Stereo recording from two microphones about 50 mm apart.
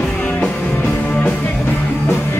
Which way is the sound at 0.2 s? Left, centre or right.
Left.